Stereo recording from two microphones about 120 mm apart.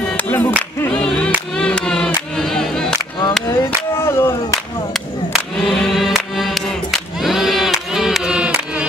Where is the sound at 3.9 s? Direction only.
20° left (ahead or behind).